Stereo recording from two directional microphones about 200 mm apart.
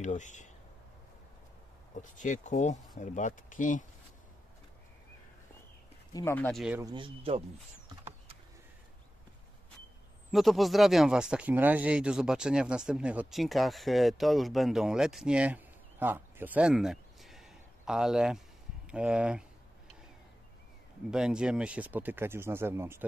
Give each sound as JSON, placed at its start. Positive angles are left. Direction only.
{"t": 0.0, "sound": "speech", "side_deg": 35}
{"t": 2.0, "sound": "speech", "side_deg": 40}
{"t": 6.1, "sound": "speech", "side_deg": 10}
{"t": 6.4, "sound": "speech", "side_deg": 0}
{"t": 6.8, "sound": "speech", "side_deg": -20}
{"t": 10.3, "sound": "speech", "side_deg": 0}
{"t": 21.1, "sound": "speech", "side_deg": -5}